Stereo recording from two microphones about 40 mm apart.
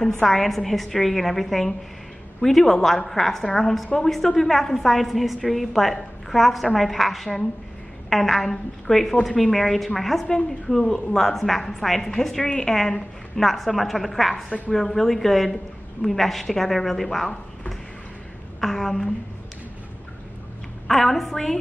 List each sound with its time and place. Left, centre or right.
0.2 s a woman's voice: centre
11.1 s a woman's voice: centre
12.4 s a woman's voice: left
12.6 s a woman's voice: centre
18.6 s a woman's voice: centre
20.8 s a woman's voice: centre